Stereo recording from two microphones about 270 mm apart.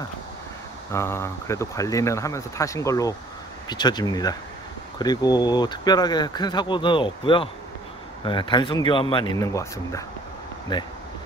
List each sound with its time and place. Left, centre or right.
0.9 s speech: centre